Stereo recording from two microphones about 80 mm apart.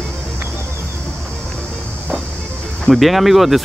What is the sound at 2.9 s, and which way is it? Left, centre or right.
Speech, centre.